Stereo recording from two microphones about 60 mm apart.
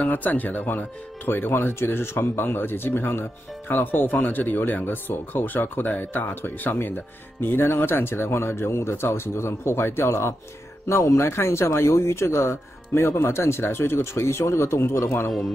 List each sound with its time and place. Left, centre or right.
0.0 s a man's voice: left